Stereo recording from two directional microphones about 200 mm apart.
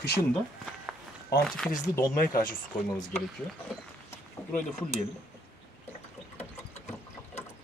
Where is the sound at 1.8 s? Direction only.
15° left (ahead or behind).